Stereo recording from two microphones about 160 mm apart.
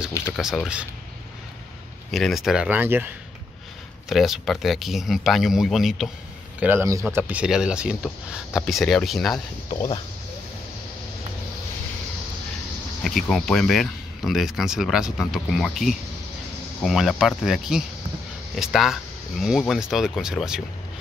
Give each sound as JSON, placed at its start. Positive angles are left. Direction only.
{"t": 0.3, "sound": "speech", "side_deg": -5}
{"t": 2.0, "sound": "speech", "side_deg": 0}
{"t": 4.1, "sound": "speech", "side_deg": 0}
{"t": 6.6, "sound": "speech", "side_deg": -15}
{"t": 9.3, "sound": "speech", "side_deg": 30}
{"t": 13.0, "sound": "speech", "side_deg": 5}